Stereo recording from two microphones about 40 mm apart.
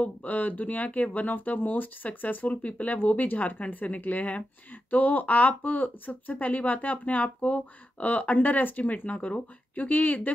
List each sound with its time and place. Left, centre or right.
0.0 s speech: left